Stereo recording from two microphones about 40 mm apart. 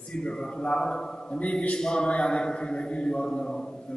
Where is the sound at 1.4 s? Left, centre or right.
Left.